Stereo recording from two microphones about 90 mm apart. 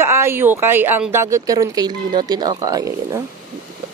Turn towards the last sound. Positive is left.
turn(degrees=-40)  # may be behind; listen again after turning